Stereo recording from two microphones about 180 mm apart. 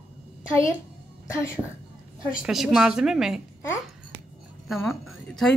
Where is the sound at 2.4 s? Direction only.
Centre (ahead or behind).